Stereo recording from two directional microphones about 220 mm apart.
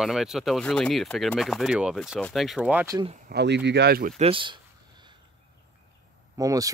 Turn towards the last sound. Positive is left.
turn(degrees=-15)  # may be behind; listen again after turning